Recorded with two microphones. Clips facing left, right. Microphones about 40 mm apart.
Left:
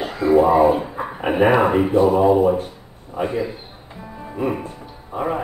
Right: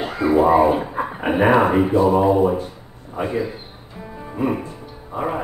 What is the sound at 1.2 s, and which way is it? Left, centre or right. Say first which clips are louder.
A man's voice: even; centre.